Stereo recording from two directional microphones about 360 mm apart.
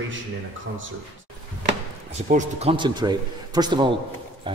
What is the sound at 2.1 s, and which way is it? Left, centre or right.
A man's voice, centre.